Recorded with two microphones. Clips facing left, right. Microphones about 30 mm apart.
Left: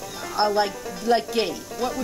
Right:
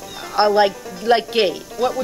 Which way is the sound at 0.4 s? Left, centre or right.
Right.